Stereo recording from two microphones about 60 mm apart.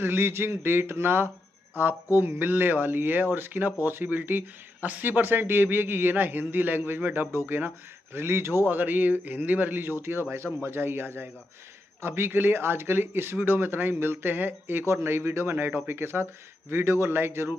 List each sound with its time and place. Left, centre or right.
0.0 s speech: right
7.2 s speech: right
7.5 s speech: right